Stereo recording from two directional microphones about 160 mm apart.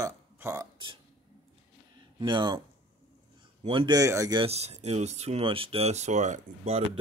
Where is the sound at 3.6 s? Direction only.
35° right (ahead or behind).